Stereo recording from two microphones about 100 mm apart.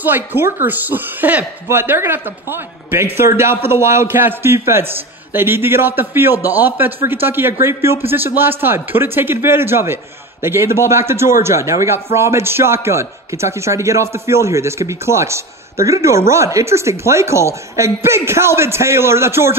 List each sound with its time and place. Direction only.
0.0 s speech: 20° right (ahead or behind)